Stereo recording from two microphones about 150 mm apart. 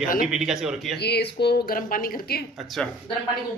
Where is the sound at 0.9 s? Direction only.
90° left.